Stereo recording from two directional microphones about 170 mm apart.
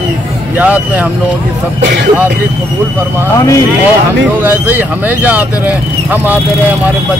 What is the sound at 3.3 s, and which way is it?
Speech, 20° left (ahead or behind).